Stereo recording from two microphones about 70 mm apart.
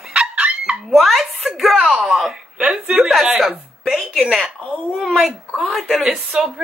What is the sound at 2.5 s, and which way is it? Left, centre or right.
Speech, centre.